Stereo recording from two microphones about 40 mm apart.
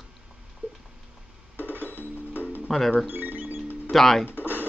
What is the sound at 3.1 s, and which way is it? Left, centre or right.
Cash register, right.